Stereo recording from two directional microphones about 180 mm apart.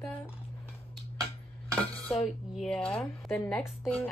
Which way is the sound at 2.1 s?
Centre (ahead or behind).